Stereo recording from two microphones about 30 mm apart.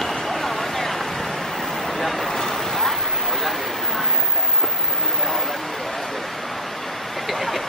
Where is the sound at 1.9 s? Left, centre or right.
Centre.